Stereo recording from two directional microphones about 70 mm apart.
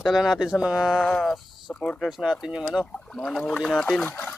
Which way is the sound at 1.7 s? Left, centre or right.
Centre.